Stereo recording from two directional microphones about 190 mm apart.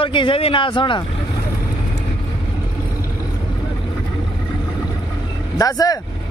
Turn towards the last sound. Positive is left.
turn(degrees=20)  # may be behind; listen again after turning